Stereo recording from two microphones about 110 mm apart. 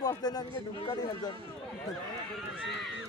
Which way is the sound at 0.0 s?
35° left (ahead or behind).